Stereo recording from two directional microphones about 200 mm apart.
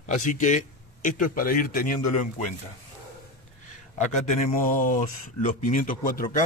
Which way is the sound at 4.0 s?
40° left (ahead or behind).